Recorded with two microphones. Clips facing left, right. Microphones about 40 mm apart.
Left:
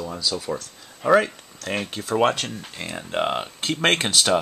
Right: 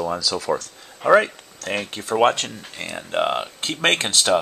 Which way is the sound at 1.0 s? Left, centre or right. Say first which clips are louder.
Right 2 dB; centre.